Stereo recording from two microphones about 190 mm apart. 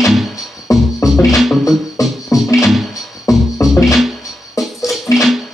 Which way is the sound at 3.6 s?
15° left (ahead or behind).